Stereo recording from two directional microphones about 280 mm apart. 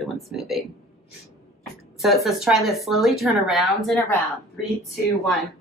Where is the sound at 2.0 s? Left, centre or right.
Centre.